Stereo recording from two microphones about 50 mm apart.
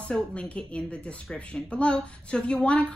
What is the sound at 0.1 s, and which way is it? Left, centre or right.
A woman's voice, left.